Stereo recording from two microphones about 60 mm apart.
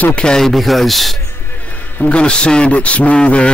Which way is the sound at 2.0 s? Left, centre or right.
Centre.